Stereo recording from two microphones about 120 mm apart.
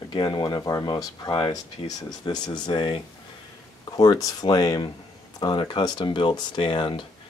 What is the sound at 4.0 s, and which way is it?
Speech, 30° left (ahead or behind).